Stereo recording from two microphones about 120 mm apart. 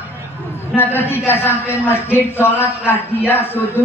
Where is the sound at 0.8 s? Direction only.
20° left (ahead or behind).